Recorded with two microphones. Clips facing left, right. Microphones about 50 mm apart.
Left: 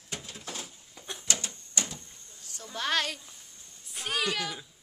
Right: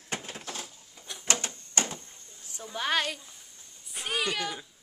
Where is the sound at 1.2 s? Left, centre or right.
Right.